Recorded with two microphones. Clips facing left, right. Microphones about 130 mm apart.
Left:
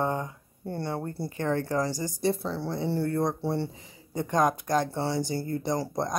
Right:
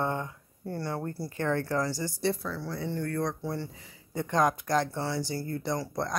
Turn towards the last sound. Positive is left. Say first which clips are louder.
# left 3 dB
turn(degrees=20)  # may be behind; listen again after turning